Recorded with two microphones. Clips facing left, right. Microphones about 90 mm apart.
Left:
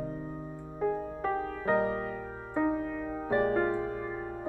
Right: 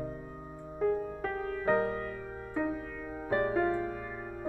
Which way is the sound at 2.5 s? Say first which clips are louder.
Left 5 dB; 35° left (ahead or behind).